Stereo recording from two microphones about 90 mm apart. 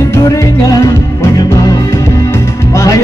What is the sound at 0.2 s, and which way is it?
Music, 40° left (ahead or behind).